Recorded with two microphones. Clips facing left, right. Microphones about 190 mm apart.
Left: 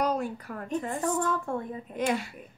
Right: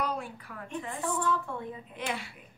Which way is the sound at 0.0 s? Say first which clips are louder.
Left 6 dB; 40° left (ahead or behind).